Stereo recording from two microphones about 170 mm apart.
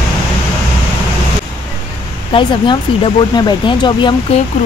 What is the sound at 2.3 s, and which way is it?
Speech, 30° left (ahead or behind).